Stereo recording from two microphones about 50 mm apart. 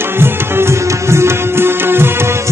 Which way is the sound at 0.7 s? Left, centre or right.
Right.